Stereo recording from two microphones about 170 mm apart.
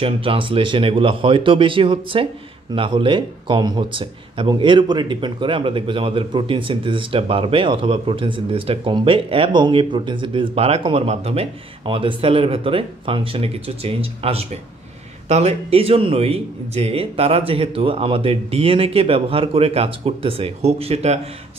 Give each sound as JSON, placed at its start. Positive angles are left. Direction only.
{"t": 0.0, "sound": "speech", "side_deg": -30}